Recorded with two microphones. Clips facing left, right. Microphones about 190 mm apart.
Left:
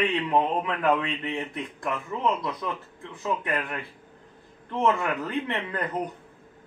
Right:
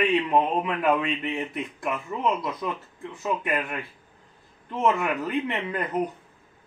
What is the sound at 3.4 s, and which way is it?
A man's voice, 15° right (ahead or behind).